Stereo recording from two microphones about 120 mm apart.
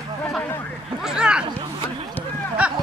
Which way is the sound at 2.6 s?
10° right (ahead or behind).